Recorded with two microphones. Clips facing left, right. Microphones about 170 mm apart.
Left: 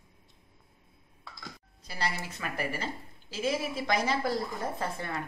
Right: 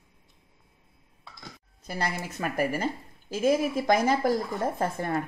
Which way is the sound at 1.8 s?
50° right (ahead or behind).